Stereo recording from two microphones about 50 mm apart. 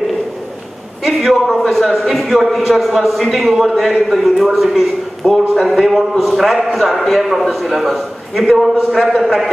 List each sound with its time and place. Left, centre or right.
1.0 s a man's voice: centre